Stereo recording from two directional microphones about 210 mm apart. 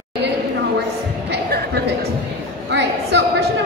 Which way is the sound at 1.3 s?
50° right (ahead or behind).